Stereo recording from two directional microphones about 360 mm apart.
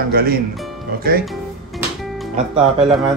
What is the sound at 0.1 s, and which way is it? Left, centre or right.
Speech, right.